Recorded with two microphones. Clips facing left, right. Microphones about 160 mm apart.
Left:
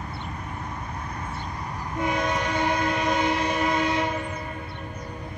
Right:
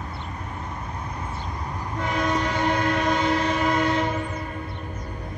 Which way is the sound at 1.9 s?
10° left (ahead or behind).